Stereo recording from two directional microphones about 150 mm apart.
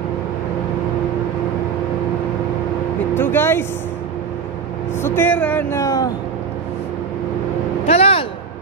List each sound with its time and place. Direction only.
3.2 s speech: 15° left (ahead or behind)
5.0 s speech: 15° left (ahead or behind)
7.8 s a sound: 40° left (ahead or behind)